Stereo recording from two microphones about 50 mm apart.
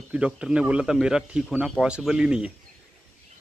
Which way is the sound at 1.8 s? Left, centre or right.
Left.